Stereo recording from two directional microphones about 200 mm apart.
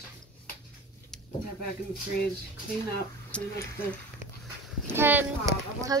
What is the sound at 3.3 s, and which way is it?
Speech, 5° left (ahead or behind).